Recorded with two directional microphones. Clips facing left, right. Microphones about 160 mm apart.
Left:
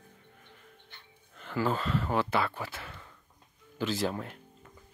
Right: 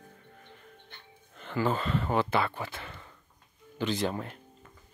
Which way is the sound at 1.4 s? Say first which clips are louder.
Right 1 dB; centre (ahead or behind).